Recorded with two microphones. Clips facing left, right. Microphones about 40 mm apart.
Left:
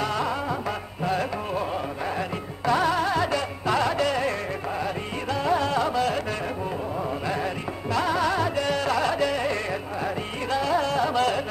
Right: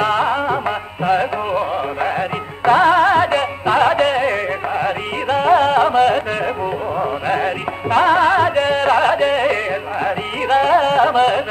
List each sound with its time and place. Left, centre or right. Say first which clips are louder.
0.0 s music: right 10 dB; right